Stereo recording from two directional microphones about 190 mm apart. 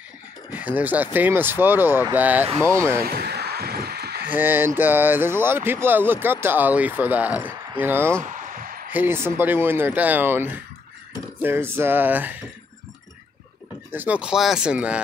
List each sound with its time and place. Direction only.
0.5 s speech: 10° right (ahead or behind)
3.0 s a sound: 55° right (ahead or behind)
4.3 s speech: 10° right (ahead or behind)
8.3 s basketball bounce: 45° right (ahead or behind)
8.9 s speech: 10° right (ahead or behind)
13.9 s speech: 5° right (ahead or behind)